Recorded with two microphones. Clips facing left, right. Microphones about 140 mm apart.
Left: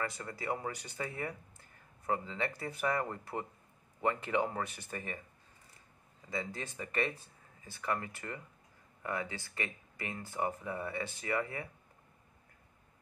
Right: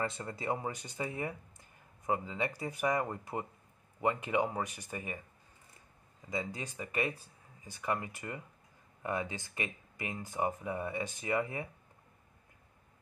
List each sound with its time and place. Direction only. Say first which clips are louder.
0.0 s speech: right 2 dB; 25° right (ahead or behind)
6.3 s speech: right 1 dB; 15° right (ahead or behind)